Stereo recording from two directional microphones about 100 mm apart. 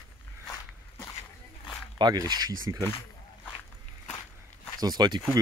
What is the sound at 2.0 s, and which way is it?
Speech, 40° right (ahead or behind).